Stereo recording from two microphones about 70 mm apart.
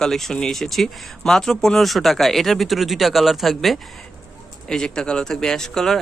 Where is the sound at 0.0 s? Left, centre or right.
Centre.